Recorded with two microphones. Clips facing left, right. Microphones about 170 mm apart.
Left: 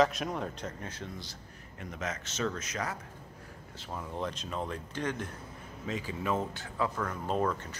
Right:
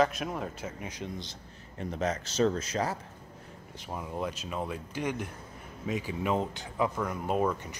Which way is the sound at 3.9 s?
10° right (ahead or behind).